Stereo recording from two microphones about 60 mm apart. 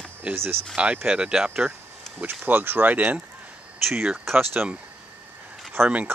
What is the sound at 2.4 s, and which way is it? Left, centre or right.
Speech, right.